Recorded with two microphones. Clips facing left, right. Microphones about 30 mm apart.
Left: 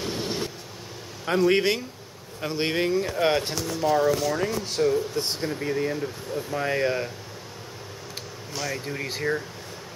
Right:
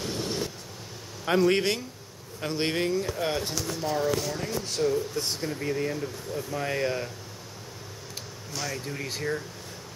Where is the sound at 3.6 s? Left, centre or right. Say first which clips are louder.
Left 7 dB; centre.